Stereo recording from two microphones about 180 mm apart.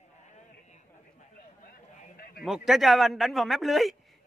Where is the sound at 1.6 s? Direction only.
55° left (ahead or behind).